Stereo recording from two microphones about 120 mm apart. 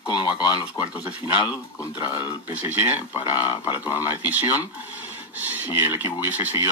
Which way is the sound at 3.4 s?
40° left (ahead or behind).